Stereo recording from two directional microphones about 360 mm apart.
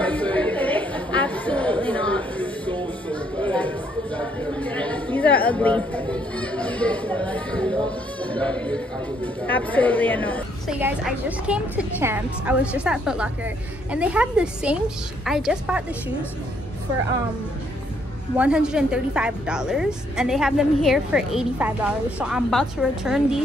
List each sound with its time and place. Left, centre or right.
0.0 s chatter: centre
13.9 s a woman's voice: centre
18.4 s a woman's voice: centre